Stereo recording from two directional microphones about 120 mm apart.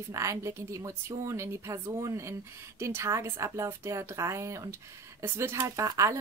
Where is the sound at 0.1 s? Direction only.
25° right (ahead or behind).